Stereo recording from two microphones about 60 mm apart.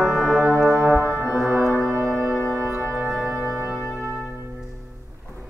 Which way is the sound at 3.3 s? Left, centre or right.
Left.